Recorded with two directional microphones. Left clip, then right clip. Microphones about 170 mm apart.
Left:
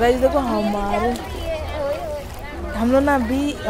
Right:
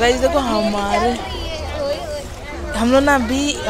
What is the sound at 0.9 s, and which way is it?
Children playing, 50° right (ahead or behind).